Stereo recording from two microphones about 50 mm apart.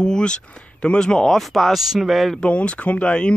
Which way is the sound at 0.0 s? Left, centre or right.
Centre.